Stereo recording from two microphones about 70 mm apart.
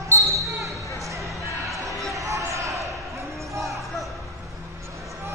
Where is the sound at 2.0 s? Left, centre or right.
Right.